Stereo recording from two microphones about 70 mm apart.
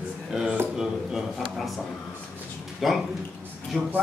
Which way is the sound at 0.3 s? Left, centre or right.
Centre.